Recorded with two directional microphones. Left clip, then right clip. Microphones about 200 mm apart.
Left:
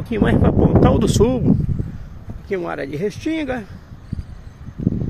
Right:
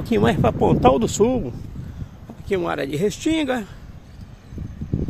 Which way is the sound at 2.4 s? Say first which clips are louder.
Right 1 dB; 10° right (ahead or behind).